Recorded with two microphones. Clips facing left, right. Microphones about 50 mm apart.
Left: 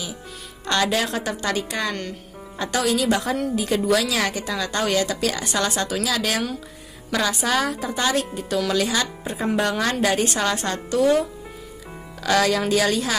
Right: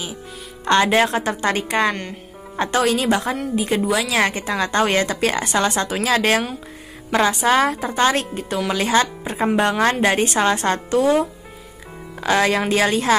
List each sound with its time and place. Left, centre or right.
0.7 s a woman's voice: right
2.0 s music: right
2.6 s a woman's voice: right
3.1 s a woman's voice: right
8.5 s a woman's voice: right
12.2 s a woman's voice: right